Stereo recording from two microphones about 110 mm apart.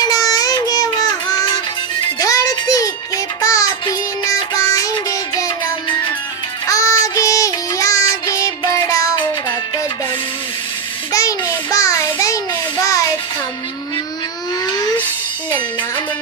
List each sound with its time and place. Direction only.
0.0 s music: 30° left (ahead or behind)
6.7 s child singing: 30° left (ahead or behind)
11.1 s a sound: 30° left (ahead or behind)